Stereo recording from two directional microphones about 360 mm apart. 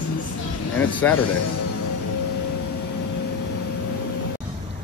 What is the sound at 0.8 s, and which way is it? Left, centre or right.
Speech, centre.